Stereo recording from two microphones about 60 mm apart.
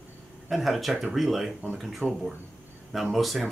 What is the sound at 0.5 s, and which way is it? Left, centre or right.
Speech, centre.